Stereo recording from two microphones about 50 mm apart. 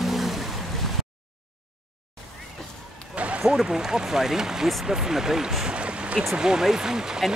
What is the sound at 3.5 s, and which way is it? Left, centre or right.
Speech, centre.